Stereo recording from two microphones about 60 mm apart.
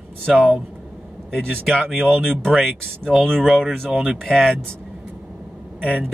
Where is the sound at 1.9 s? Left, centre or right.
Centre.